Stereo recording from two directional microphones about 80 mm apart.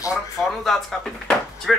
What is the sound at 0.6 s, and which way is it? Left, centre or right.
Speech, centre.